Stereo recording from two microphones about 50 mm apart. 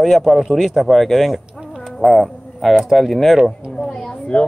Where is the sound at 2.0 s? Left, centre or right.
Centre.